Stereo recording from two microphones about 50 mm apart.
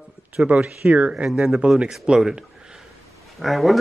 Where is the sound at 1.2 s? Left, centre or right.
Centre.